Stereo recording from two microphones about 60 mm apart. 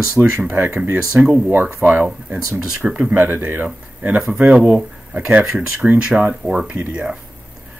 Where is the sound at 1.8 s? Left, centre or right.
Right.